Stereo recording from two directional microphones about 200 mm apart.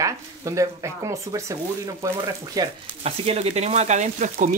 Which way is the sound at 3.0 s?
30° right (ahead or behind).